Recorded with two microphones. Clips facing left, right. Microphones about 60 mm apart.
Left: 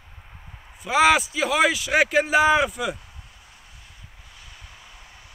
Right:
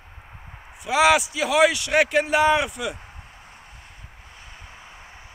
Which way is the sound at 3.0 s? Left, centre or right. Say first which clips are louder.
Right 4 dB; right.